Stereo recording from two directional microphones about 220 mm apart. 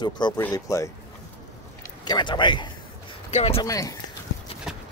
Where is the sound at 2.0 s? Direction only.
20° left (ahead or behind).